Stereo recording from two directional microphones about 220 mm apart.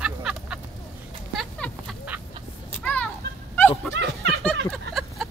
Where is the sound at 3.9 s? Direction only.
50° right (ahead or behind).